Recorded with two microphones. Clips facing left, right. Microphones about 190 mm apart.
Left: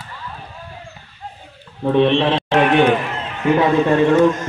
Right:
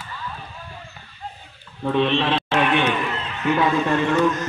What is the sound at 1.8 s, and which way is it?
Speech, 25° left (ahead or behind).